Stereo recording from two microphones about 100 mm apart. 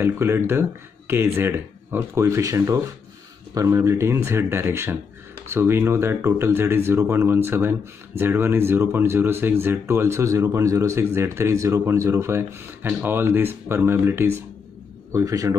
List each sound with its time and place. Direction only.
0.0 s a man's voice: 25° right (ahead or behind)